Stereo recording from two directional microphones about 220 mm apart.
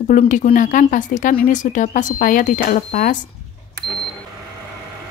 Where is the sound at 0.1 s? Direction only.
35° left (ahead or behind).